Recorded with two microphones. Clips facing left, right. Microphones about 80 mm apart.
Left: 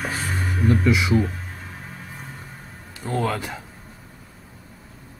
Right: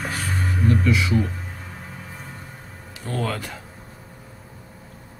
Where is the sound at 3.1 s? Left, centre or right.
Centre.